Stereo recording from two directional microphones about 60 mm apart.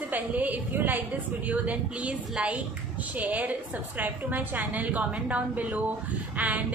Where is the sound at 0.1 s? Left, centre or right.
Right.